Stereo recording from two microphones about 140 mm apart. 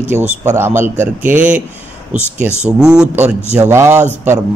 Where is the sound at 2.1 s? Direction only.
55° right (ahead or behind).